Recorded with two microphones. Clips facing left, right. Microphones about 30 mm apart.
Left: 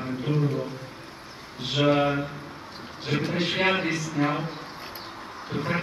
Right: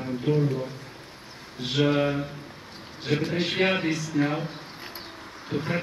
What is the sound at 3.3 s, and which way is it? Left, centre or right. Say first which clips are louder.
A man's voice: left 2 dB; centre.